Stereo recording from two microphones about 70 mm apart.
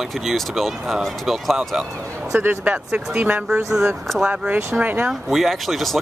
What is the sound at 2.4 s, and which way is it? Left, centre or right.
Speech, centre.